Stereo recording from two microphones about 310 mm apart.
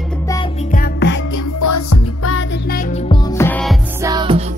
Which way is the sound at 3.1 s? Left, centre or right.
Centre.